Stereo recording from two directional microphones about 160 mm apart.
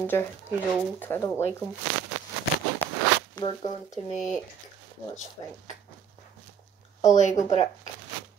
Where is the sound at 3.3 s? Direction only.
30° left (ahead or behind).